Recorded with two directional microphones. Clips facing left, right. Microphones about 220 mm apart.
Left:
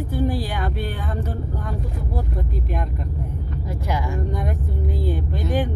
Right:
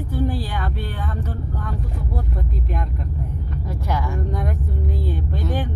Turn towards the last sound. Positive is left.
turn(degrees=15)  # may be behind; listen again after turning